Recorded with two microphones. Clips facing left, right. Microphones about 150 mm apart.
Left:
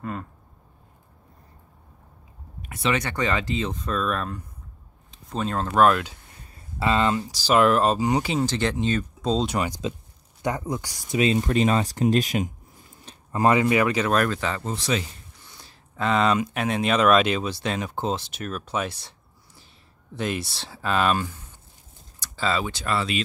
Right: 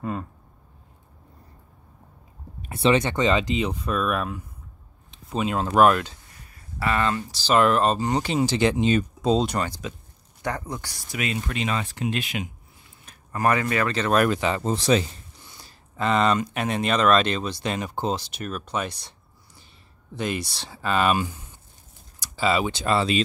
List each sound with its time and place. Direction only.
2.6 s speech: 30° right (ahead or behind); by 6.0 s 5° right (ahead or behind)
6.8 s speech: 20° left (ahead or behind)
8.4 s speech: 10° right (ahead or behind)
9.5 s speech: 10° left (ahead or behind)
11.1 s speech: 35° left (ahead or behind)
13.0 s speech: 20° left (ahead or behind)
14.1 s speech: 10° right (ahead or behind)
14.6 s speech: 35° right (ahead or behind)
15.5 s speech: centre (ahead or behind)
22.2 s speech: 10° right (ahead or behind); by 23.2 s 30° right (ahead or behind)